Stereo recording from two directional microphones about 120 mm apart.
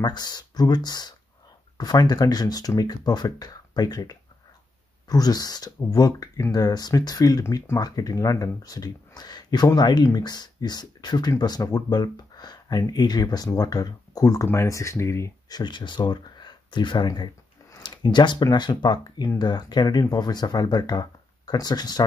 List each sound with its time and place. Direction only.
0.0 s speech: 35° left (ahead or behind)